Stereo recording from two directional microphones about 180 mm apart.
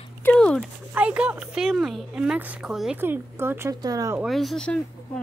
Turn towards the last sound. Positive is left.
turn(degrees=5)  # may be behind; listen again after turning